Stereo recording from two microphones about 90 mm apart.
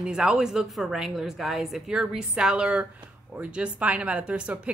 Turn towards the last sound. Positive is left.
turn(degrees=-10)  # may be behind; listen again after turning